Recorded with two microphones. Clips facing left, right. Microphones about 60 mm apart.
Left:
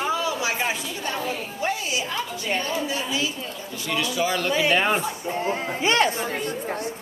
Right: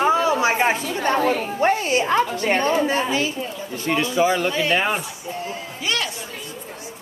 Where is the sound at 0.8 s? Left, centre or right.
Right.